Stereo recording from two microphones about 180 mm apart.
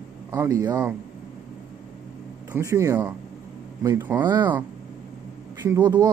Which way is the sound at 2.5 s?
15° right (ahead or behind).